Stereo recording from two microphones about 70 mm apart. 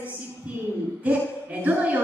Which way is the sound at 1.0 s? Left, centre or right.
Right.